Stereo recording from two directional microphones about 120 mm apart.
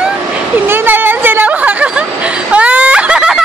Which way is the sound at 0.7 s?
15° right (ahead or behind).